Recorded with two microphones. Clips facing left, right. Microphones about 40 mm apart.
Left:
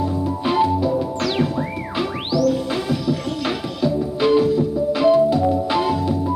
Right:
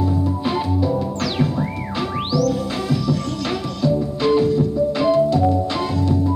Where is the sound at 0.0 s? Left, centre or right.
Centre.